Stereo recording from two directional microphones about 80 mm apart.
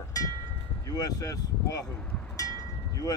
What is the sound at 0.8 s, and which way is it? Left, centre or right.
Speech, left.